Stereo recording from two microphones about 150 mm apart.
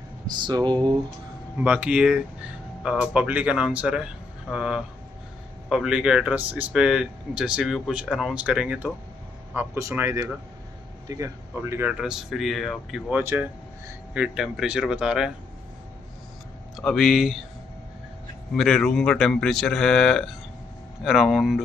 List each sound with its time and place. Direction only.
0.4 s speech: 30° right (ahead or behind)
1.6 s speech: 10° right (ahead or behind)
9.6 s speech: 15° right (ahead or behind)
11.9 s speech: 5° right (ahead or behind)
13.2 s speech: 15° right (ahead or behind)
14.1 s speech: 5° right (ahead or behind)
16.7 s speech: centre (ahead or behind)
18.5 s speech: 5° left (ahead or behind)